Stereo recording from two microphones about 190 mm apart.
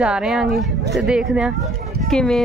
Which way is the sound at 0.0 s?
5° right (ahead or behind).